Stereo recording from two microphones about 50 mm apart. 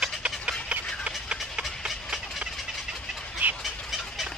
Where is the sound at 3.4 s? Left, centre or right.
Right.